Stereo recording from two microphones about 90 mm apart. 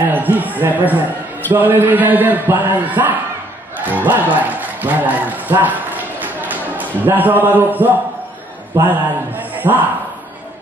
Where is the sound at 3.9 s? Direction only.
20° right (ahead or behind).